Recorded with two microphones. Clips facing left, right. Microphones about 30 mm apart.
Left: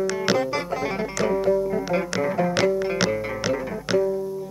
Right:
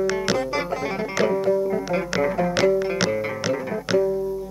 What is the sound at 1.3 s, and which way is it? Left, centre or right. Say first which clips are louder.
Music: even; centre.